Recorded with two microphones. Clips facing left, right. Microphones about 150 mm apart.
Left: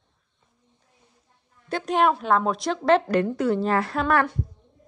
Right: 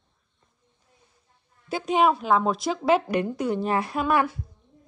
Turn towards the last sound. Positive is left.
turn(degrees=-10)  # may be behind; listen again after turning